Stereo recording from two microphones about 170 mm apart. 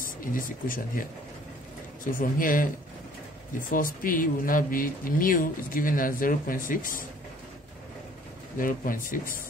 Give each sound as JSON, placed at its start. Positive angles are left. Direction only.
{"t": 0.0, "sound": "speech", "side_deg": 55}
{"t": 2.0, "sound": "speech", "side_deg": 55}
{"t": 3.7, "sound": "speech", "side_deg": 55}
{"t": 8.5, "sound": "speech", "side_deg": 55}